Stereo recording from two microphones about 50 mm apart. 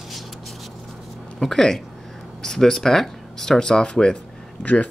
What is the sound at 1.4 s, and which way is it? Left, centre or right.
Speech, centre.